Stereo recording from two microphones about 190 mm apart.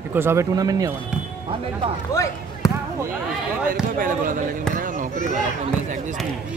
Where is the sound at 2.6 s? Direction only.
15° left (ahead or behind).